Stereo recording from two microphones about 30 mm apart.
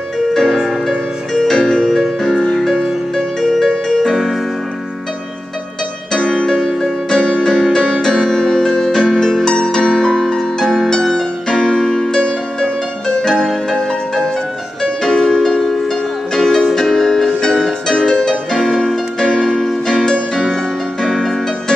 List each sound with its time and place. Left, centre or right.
0.5 s music: centre
1.3 s music: left
2.7 s music: centre
3.3 s music: centre
3.6 s music: centre
6.1 s music: centre
7.1 s music: left
15.1 s music: centre; by 18.3 s left
18.6 s music: centre
19.1 s music: left